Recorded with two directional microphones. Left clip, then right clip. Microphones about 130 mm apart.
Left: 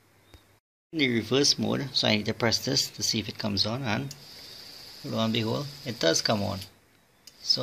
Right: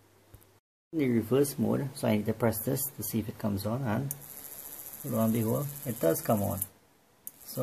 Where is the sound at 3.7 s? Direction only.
15° left (ahead or behind).